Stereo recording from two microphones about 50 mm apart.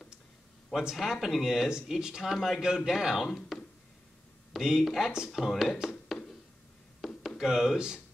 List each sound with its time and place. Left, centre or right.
0.7 s speech: centre
2.3 s speech: centre
3.5 s a sound: centre
4.6 s speech: centre
5.8 s a sound: centre
7.2 s speech: centre